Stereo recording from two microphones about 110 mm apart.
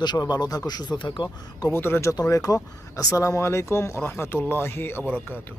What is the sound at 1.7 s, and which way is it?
Speech, 20° left (ahead or behind).